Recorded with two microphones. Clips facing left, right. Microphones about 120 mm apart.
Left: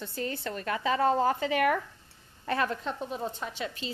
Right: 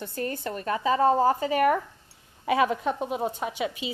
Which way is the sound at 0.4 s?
30° right (ahead or behind).